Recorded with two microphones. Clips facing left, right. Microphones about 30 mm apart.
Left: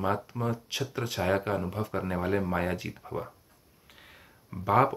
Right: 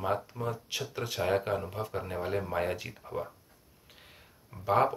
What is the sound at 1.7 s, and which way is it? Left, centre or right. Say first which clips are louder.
Speech: left 2 dB; left.